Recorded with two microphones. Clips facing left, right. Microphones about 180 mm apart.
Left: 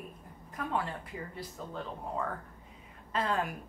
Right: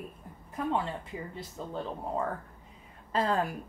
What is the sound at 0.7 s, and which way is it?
Speech, 25° right (ahead or behind).